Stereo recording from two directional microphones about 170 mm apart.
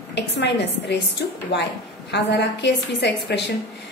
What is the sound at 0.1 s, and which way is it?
A woman's voice, 90° left.